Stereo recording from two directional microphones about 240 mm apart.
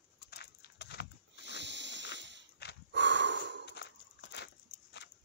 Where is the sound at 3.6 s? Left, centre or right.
Left.